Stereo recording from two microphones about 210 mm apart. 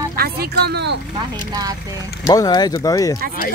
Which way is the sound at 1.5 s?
15° right (ahead or behind).